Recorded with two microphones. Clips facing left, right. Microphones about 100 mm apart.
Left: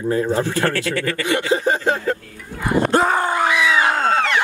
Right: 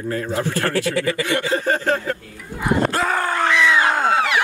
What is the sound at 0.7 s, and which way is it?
Speech, 15° right (ahead or behind).